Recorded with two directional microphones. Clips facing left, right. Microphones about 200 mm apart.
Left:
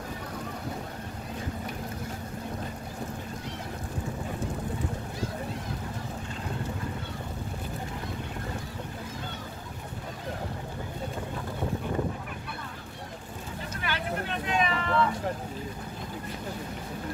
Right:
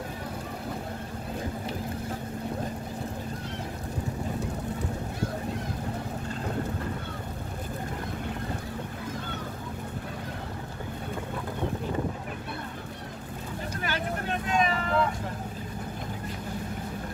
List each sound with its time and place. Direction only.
13.8 s vehicle: 45° right (ahead or behind)